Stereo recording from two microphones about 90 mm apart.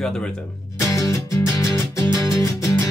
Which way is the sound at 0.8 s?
40° left (ahead or behind).